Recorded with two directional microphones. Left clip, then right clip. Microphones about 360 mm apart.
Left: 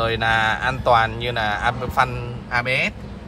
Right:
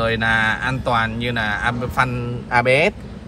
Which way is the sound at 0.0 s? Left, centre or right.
Centre.